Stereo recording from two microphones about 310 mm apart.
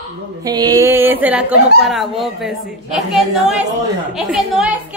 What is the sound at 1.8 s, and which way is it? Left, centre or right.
A woman's voice, centre.